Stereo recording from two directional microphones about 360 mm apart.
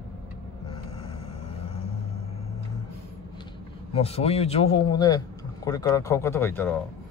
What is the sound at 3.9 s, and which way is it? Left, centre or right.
A man's voice, centre.